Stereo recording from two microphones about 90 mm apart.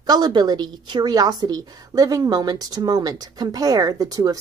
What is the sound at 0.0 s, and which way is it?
A woman's voice, 45° right (ahead or behind).